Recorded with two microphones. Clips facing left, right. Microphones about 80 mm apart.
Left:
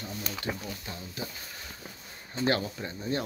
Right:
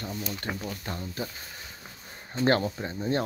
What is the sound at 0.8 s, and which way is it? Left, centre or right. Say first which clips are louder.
Speech: right 4 dB; right.